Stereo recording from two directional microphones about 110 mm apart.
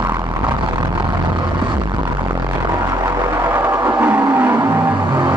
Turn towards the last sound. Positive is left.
turn(degrees=-20)  # may be behind; listen again after turning